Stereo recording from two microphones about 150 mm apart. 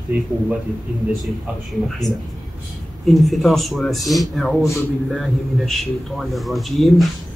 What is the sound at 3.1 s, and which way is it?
Speech, centre (ahead or behind).